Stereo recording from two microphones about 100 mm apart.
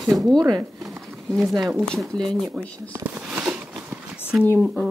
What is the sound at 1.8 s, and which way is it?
Speech, 5° left (ahead or behind).